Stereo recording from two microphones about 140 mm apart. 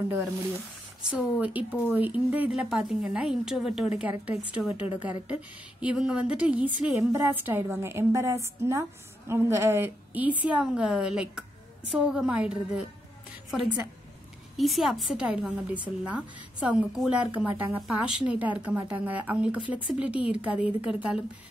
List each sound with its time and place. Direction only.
1.1 s a woman's voice: 10° right (ahead or behind)